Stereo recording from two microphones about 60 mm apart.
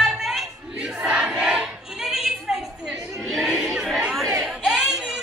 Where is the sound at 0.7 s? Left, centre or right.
Centre.